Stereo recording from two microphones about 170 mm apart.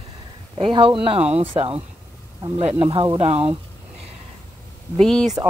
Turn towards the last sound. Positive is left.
turn(degrees=5)  # may be behind; listen again after turning